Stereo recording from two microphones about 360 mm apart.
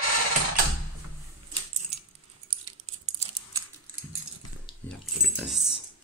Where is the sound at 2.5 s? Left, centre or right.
Centre.